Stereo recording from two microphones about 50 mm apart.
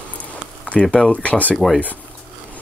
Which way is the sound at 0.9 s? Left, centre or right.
Left.